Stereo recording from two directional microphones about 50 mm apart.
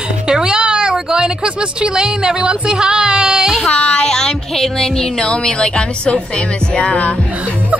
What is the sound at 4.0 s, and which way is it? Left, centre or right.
Speech, centre.